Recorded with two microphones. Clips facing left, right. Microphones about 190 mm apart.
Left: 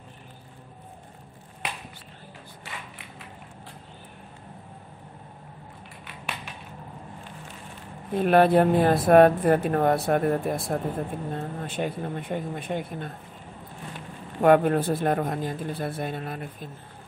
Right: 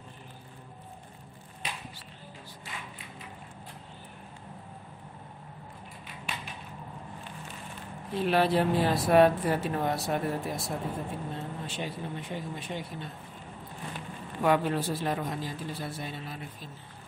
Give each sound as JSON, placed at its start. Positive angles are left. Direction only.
{"t": 8.1, "sound": "speech", "side_deg": 55}
{"t": 14.4, "sound": "speech", "side_deg": 55}